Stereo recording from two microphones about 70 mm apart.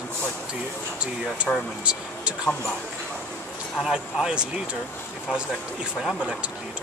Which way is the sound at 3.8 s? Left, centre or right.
Centre.